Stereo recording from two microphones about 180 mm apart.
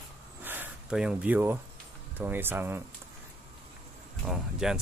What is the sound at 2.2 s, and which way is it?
Speech, 10° right (ahead or behind).